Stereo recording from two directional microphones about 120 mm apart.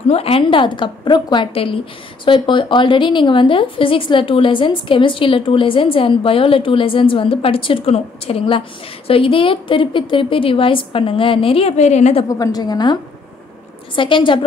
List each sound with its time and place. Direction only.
0.1 s a woman's voice: 50° left (ahead or behind)
11.7 s a woman's voice: 70° left (ahead or behind)
12.3 s a woman's voice: 30° left (ahead or behind)